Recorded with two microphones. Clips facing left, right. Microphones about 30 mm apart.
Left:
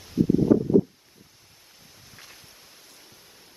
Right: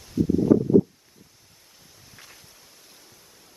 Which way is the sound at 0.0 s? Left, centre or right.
Centre.